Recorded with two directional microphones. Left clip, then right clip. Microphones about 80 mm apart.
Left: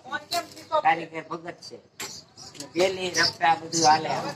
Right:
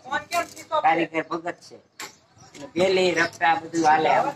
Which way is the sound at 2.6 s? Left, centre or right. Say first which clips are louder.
Right 4 dB; right.